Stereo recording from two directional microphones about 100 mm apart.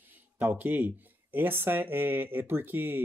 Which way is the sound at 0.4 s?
15° right (ahead or behind).